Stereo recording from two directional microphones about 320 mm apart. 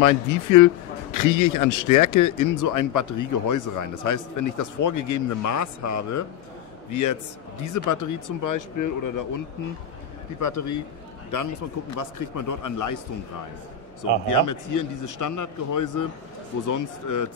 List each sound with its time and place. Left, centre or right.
0.0 s a man's voice: left
10.4 s a man's voice: left
11.9 s speech: left
14.3 s speech: left